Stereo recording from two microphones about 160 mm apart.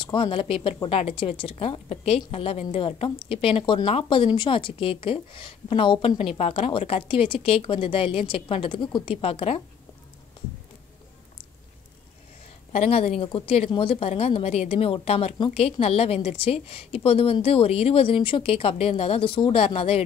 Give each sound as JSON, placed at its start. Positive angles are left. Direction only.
{"t": 0.0, "sound": "a woman's voice", "side_deg": 30}
{"t": 12.7, "sound": "a woman's voice", "side_deg": 40}